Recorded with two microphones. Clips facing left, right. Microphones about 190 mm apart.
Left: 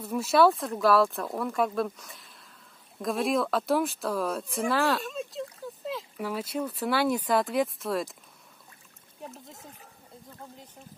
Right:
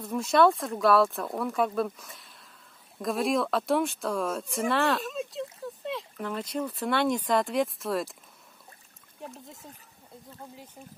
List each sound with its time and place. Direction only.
0.0 s speech: 5° left (ahead or behind)
9.2 s speech: centre (ahead or behind)